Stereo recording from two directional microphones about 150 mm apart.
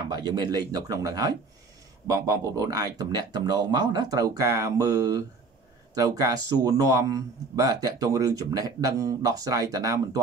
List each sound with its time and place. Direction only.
0.1 s speech: 25° right (ahead or behind)